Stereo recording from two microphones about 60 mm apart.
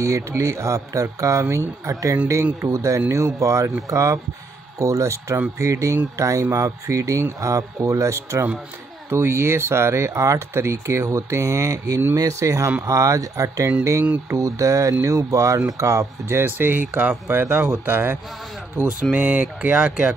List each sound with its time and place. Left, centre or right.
0.0 s speech: right
1.9 s speech: right
2.7 s speech: right
9.1 s speech: right
16.3 s speech: right
19.1 s speech: right